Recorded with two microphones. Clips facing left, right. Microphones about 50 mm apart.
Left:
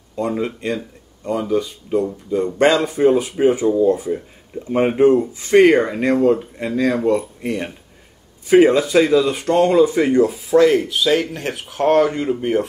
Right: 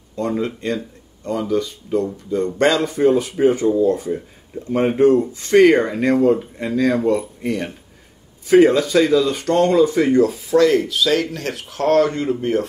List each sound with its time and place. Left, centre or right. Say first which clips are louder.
0.1 s speech: even; centre
10.5 s speech: left 2 dB; centre